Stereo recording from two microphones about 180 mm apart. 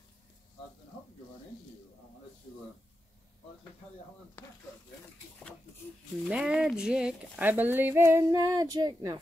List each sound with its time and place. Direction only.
6.2 s speech: 5° right (ahead or behind)